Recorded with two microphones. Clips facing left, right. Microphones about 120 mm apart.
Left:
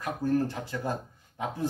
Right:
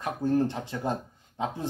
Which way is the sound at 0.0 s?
20° right (ahead or behind).